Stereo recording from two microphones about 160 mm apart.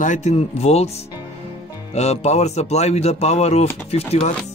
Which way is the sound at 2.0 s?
40° left (ahead or behind).